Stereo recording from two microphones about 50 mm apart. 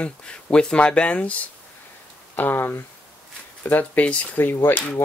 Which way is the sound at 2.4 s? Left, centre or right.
Left.